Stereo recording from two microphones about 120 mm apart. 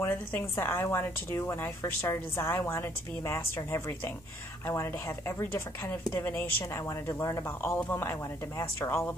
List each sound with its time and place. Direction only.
0.0 s speech: 20° left (ahead or behind)
6.9 s speech: 25° left (ahead or behind)